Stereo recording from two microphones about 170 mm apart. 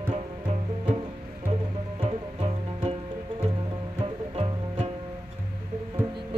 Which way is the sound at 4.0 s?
35° right (ahead or behind).